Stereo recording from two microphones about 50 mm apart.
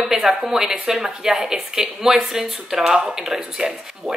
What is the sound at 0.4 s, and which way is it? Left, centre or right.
A woman's voice, centre.